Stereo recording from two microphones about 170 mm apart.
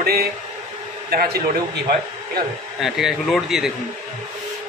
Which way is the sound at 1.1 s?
65° right (ahead or behind).